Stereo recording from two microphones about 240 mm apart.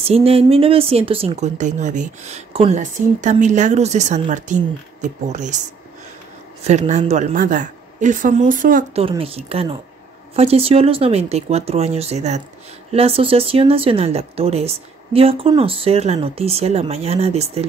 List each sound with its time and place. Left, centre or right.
0.0 s a woman's voice: right
6.6 s a woman's voice: right
9.0 s speech: right